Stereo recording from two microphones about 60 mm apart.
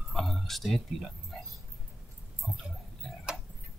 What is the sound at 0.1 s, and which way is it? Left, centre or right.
Music, centre.